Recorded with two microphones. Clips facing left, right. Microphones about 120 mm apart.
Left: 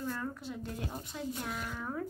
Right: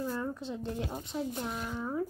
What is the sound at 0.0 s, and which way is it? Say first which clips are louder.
Speech: right 3 dB; 15° right (ahead or behind).